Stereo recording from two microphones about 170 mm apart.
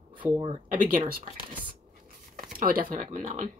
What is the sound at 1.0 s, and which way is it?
A woman's voice, 60° right (ahead or behind).